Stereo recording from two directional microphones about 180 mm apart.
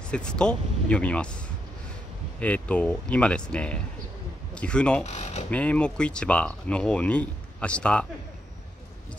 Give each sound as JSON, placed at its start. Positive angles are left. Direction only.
{"t": 0.1, "sound": "speech", "side_deg": 5}
{"t": 2.4, "sound": "speech", "side_deg": 5}
{"t": 5.0, "sound": "speech", "side_deg": 40}
{"t": 5.5, "sound": "speech", "side_deg": 5}